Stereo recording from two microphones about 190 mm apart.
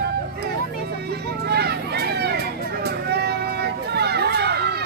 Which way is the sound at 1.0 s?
60° right (ahead or behind).